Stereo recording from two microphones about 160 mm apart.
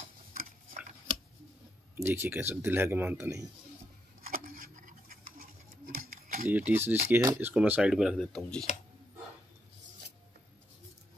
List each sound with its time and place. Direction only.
0.0 s stir: 55° right (ahead or behind)
2.0 s speech: 15° right (ahead or behind)
4.3 s a sound: 55° right (ahead or behind)
6.5 s speech: 10° right (ahead or behind)